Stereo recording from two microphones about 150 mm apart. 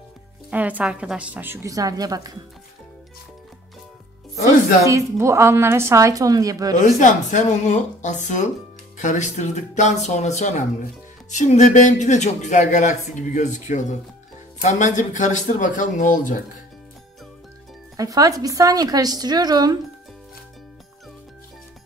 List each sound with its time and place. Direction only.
0.5 s a woman's voice: 10° right (ahead or behind)
4.8 s a woman's voice: 20° right (ahead or behind)
6.8 s speech: 60° left (ahead or behind)
17.9 s a woman's voice: 25° right (ahead or behind)